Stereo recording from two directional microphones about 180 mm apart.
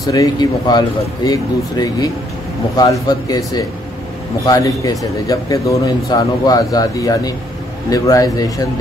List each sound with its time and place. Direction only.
0.0 s speech: 20° left (ahead or behind)